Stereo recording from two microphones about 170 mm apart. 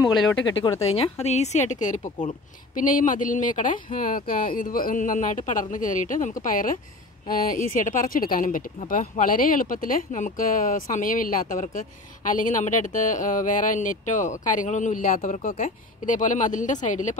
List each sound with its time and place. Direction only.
0.0 s speech: 20° left (ahead or behind)
0.6 s speech: 35° left (ahead or behind)